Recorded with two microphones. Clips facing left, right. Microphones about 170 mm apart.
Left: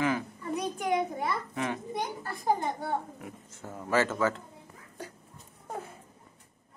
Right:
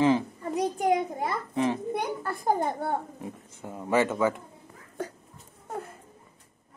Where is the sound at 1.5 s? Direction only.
30° right (ahead or behind).